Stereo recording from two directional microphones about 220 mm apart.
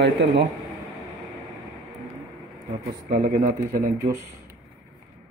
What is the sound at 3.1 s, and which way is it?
Speech, 35° right (ahead or behind).